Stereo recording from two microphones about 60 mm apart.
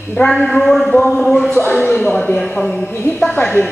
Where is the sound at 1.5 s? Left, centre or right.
Left.